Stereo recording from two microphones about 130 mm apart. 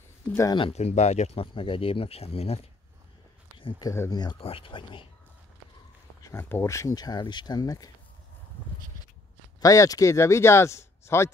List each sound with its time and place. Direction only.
0.5 s speech: 40° left (ahead or behind)
0.7 s speech: 60° left (ahead or behind)
3.5 s speech: 40° left (ahead or behind)
4.4 s speech: 45° left (ahead or behind)
6.2 s speech: 20° left (ahead or behind)
9.6 s speech: 25° left (ahead or behind)